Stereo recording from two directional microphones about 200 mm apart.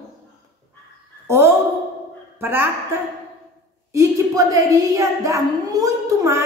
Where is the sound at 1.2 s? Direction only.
10° right (ahead or behind).